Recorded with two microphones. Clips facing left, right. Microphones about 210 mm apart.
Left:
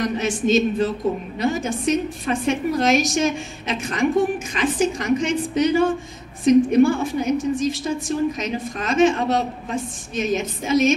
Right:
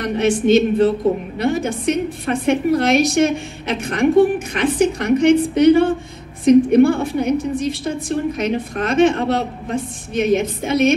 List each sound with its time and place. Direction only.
0.0 s a woman's voice: 60° right (ahead or behind)